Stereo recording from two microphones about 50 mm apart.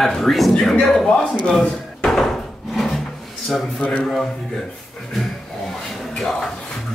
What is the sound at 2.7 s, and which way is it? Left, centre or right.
Wood, centre.